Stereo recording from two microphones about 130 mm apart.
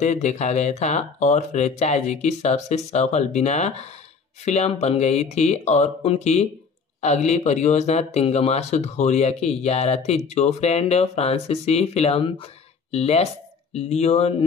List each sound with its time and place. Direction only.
0.0 s speech: 65° left (ahead or behind)